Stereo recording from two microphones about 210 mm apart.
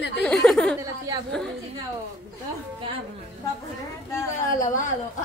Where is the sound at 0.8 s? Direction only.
15° right (ahead or behind).